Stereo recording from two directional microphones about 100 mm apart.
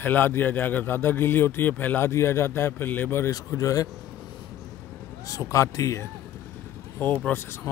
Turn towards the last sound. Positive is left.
turn(degrees=25)  # may be behind; listen again after turning